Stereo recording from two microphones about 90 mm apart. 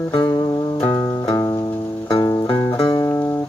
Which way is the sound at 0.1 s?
55° left (ahead or behind).